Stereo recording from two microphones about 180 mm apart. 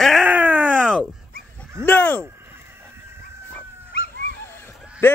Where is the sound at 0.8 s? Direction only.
Centre (ahead or behind).